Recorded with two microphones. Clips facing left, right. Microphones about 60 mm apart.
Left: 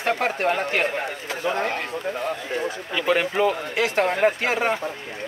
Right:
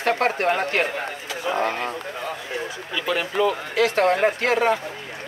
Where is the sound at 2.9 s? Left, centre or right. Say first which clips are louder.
Left 2 dB; left.